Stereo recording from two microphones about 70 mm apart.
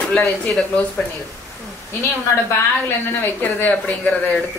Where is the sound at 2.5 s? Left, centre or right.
Left.